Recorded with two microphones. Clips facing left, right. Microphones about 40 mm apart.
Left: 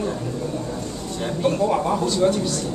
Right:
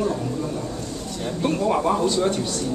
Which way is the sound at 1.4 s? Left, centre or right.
Centre.